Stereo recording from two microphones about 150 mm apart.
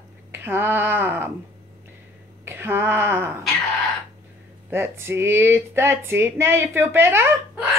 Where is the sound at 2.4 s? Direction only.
15° right (ahead or behind).